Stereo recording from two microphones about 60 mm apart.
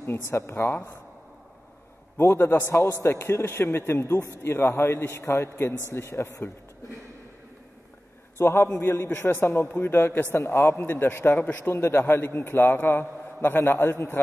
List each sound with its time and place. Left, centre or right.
0.3 s a man's voice: left
2.3 s a man's voice: left
8.4 s a man's voice: left